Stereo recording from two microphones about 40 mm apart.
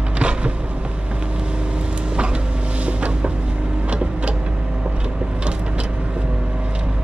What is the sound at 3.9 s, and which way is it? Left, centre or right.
Vehicle, right.